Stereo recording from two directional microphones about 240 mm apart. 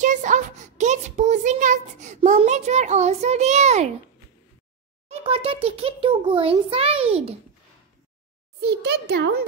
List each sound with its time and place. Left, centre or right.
0.0 s a sound: right
5.0 s a child's voice: right
8.5 s a child's voice: right